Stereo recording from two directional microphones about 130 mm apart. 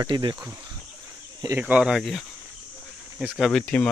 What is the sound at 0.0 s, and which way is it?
Speech, 35° right (ahead or behind).